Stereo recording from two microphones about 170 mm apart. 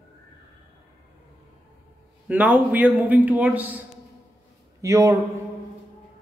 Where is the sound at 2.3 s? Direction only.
10° right (ahead or behind).